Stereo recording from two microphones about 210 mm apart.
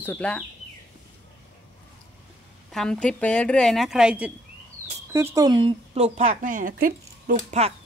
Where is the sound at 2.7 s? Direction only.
5° left (ahead or behind); by 7.7 s 35° right (ahead or behind).